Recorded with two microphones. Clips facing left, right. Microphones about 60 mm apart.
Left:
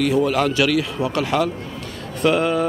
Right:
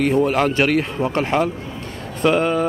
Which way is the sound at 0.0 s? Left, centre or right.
Right.